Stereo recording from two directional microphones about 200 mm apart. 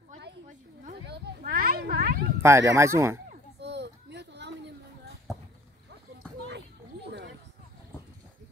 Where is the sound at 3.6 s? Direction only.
55° right (ahead or behind).